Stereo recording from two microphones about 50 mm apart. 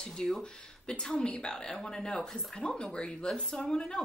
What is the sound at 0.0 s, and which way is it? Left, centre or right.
Speech, centre.